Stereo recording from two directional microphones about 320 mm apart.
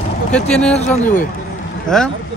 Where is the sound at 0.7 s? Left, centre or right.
Left.